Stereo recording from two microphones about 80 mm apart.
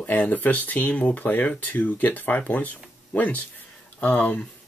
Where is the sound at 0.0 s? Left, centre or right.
Left.